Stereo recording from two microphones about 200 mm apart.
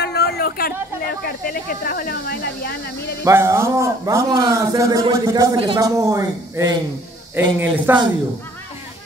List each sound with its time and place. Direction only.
0.0 s a sound: 55° left (ahead or behind)
1.2 s speech: 45° left (ahead or behind)
3.3 s a man's voice: 15° right (ahead or behind)